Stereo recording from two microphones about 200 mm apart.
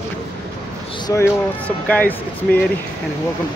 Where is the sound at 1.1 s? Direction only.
10° left (ahead or behind).